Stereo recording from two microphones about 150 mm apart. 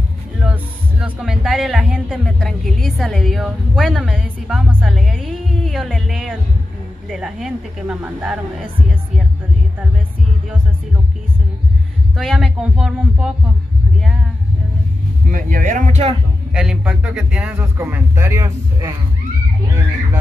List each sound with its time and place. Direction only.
0.4 s speech: 5° right (ahead or behind)
12.2 s speech: centre (ahead or behind)
15.3 s speech: 65° right (ahead or behind)
16.5 s a man's voice: 5° right (ahead or behind)